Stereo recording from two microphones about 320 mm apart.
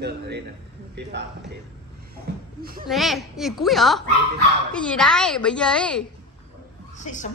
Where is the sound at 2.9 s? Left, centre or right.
Centre.